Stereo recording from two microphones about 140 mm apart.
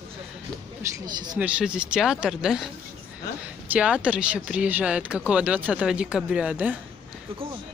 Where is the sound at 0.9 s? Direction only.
30° right (ahead or behind).